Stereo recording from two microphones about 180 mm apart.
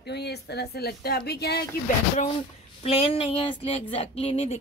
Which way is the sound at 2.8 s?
30° left (ahead or behind).